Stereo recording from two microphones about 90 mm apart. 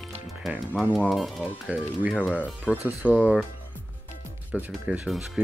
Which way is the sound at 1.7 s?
15° right (ahead or behind).